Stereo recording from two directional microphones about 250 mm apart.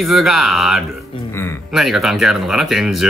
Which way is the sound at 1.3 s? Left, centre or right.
Centre.